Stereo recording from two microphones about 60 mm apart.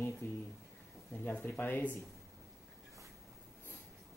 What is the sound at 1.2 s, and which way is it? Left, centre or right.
Speech, left.